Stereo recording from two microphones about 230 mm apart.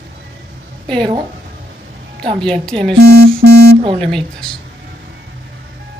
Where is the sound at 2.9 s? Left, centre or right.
Right.